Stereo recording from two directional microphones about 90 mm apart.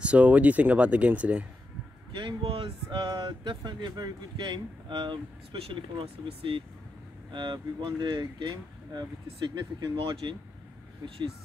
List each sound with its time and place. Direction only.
0.0 s speech: 15° right (ahead or behind)
2.1 s speech: 70° right (ahead or behind)
7.2 s speech: 60° right (ahead or behind)